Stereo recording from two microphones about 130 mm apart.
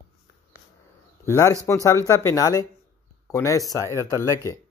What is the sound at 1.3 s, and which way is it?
Speech, 20° left (ahead or behind).